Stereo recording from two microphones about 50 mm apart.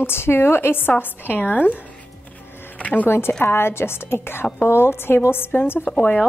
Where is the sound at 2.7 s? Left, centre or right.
Left.